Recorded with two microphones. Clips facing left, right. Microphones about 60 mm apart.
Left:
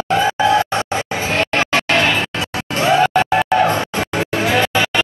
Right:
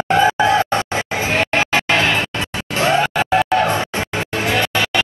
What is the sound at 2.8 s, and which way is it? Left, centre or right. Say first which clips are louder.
Music: left 3 dB; centre.